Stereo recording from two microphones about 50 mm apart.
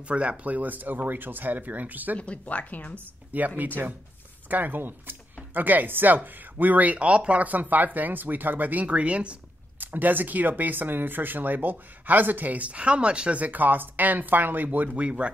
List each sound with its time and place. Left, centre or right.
0.1 s speech: right
2.1 s speech: left
3.3 s speech: right
8.8 s speech: right
9.8 s speech: right
14.9 s speech: right